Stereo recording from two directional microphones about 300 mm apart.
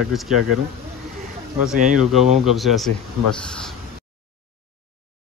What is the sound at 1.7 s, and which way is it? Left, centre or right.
Speech, right.